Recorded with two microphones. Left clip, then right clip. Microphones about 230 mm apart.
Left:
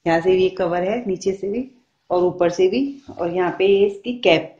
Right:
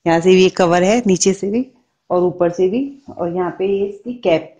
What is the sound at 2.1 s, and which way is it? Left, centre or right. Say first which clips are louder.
Speech: right 2 dB; right.